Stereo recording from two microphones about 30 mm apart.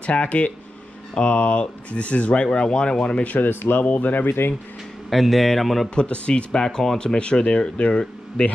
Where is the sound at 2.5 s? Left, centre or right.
Left.